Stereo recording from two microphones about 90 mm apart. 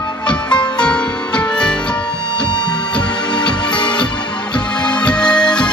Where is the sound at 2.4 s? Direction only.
55° left (ahead or behind).